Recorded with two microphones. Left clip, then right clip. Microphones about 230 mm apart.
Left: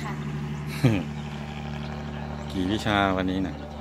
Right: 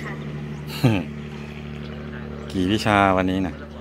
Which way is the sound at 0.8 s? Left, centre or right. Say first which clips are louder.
Right 3 dB; centre.